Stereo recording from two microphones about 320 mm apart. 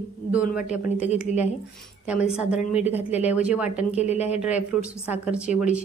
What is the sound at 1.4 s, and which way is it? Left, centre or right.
A woman's voice, centre.